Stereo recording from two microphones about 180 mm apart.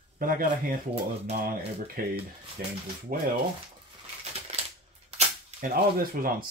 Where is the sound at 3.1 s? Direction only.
55° right (ahead or behind).